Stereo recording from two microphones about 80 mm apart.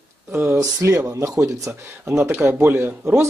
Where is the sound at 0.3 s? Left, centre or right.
Right.